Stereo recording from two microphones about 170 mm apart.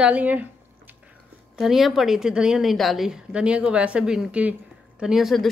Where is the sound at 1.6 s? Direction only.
Centre (ahead or behind).